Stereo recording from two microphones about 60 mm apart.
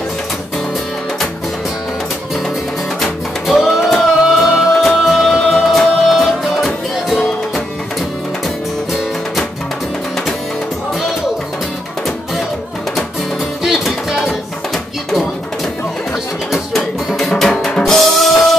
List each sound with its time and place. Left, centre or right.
3.4 s music: centre
13.7 s music: centre
17.1 s drum kit: centre